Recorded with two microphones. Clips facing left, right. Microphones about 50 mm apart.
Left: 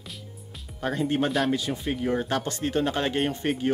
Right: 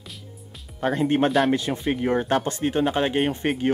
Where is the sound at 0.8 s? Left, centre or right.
Right.